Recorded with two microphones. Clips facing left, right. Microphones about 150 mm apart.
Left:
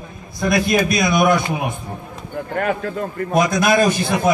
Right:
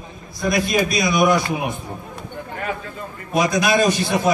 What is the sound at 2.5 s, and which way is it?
A man's voice, 55° left (ahead or behind).